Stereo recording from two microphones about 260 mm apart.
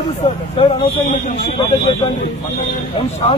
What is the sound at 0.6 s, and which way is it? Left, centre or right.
Speech, left.